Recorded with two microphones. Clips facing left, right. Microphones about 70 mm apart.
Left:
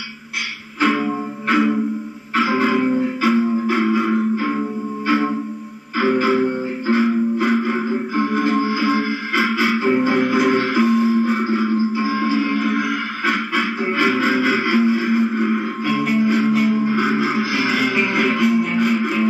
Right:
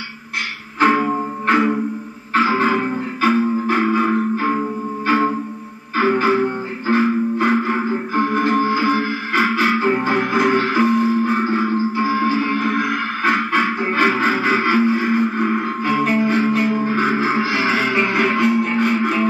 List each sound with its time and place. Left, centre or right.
0.7 s music: right
2.3 s music: right
8.8 s music: centre
9.4 s music: right